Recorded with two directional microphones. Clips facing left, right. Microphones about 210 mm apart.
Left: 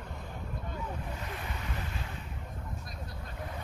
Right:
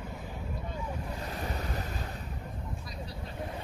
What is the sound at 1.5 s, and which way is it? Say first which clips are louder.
Waves: right 4 dB; 40° right (ahead or behind).